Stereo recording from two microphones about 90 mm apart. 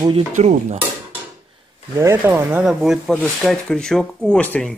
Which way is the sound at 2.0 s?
25° right (ahead or behind).